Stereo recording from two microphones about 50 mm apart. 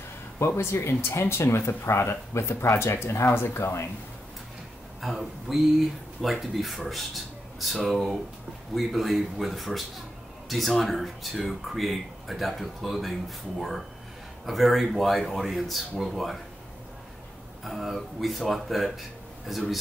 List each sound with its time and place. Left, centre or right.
0.4 s speech: left
5.0 s speech: centre
17.6 s speech: centre